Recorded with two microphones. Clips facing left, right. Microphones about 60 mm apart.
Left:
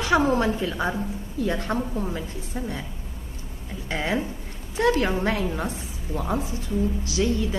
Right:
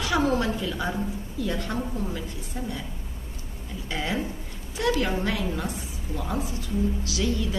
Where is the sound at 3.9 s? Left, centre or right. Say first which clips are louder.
Left 3 dB; left.